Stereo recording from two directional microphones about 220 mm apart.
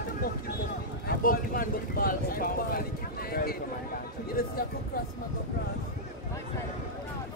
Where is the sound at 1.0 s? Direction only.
40° left (ahead or behind).